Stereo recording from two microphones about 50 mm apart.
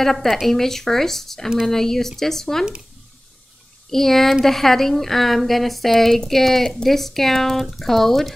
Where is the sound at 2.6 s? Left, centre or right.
Centre.